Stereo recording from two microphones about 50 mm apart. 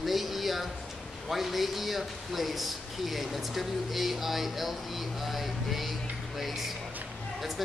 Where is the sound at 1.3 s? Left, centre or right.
Centre.